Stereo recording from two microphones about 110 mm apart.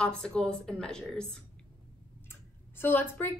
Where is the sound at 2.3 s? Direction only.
20° left (ahead or behind).